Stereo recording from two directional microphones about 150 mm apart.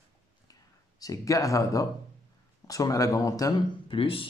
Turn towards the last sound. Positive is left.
turn(degrees=35)  # may be behind; listen again after turning